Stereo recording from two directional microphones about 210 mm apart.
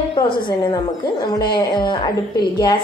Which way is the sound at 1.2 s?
20° left (ahead or behind).